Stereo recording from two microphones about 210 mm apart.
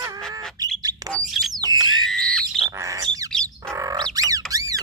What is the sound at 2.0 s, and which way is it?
Squawk, centre (ahead or behind).